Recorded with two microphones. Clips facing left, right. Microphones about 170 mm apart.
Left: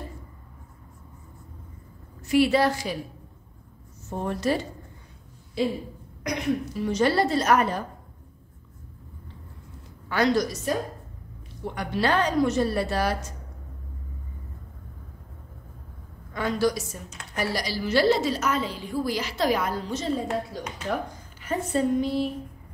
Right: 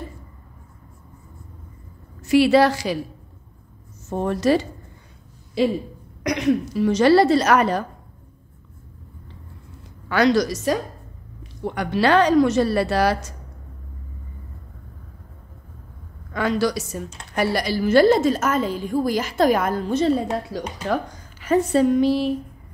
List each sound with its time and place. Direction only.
2.2 s a woman's voice: 90° right
4.1 s a woman's voice: 90° right
6.2 s a woman's voice: 90° right
10.0 s a woman's voice: 85° right
16.3 s a woman's voice: 80° right
17.4 s a woman's voice: 60° right (ahead or behind)
20.5 s a woman's voice: 90° right